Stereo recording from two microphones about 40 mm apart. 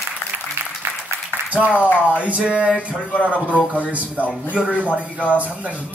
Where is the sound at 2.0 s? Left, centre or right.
Right.